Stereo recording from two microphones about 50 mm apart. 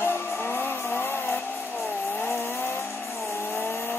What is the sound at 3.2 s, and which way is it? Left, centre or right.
Vehicle, left.